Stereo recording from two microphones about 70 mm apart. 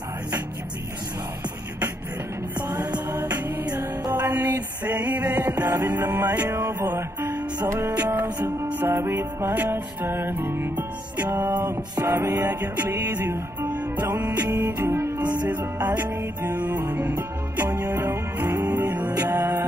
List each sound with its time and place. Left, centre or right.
4.1 s music: right
15.1 s music: right